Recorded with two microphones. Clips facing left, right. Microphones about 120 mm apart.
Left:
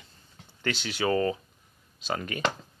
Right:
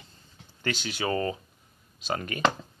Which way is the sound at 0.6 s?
40° right (ahead or behind).